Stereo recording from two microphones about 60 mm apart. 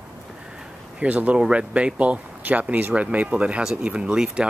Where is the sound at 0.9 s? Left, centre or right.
Right.